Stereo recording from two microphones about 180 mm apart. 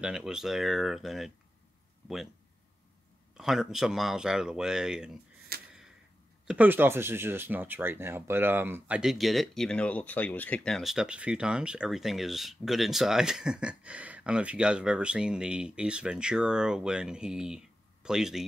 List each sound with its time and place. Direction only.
0.0 s speech: 5° right (ahead or behind)
3.3 s speech: centre (ahead or behind)
5.5 s a sound: 60° right (ahead or behind)
6.4 s speech: 5° right (ahead or behind)